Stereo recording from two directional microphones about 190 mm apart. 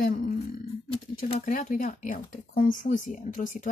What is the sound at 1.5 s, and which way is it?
Speech, 45° left (ahead or behind).